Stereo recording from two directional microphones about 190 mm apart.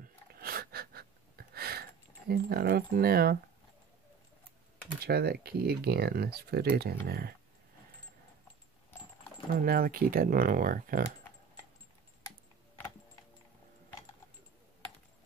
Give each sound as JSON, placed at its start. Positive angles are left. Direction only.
{"t": 0.3, "sound": "gasp", "side_deg": -50}
{"t": 5.0, "sound": "speech", "side_deg": -55}
{"t": 9.5, "sound": "speech", "side_deg": -50}